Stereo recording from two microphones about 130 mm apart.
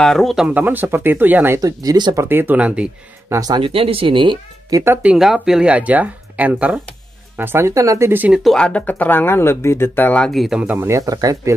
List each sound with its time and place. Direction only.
0.0 s speech: 5° left (ahead or behind)
0.6 s speech: 15° right (ahead or behind)
1.6 s speech: 30° right (ahead or behind)
2.2 s speech: 15° right (ahead or behind)
3.3 s speech: 30° right (ahead or behind)
3.6 s speech: 45° right (ahead or behind); by 5.1 s 20° right (ahead or behind)
5.1 s speech: 5° right (ahead or behind); by 8.3 s 20° right (ahead or behind)
8.3 s speech: 5° left (ahead or behind)
10.8 s speech: 25° right (ahead or behind)